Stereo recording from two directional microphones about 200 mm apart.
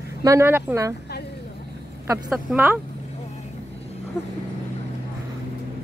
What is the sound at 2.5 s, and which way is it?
Speech, 5° right (ahead or behind).